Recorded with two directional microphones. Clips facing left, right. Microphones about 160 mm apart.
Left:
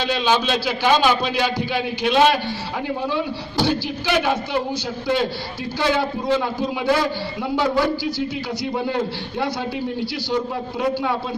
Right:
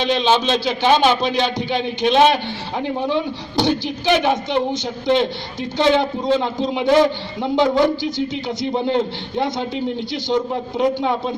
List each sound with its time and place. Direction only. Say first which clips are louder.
0.0 s speech: right 3 dB; 20° right (ahead or behind)
10.8 s speech: right 3 dB; 20° right (ahead or behind)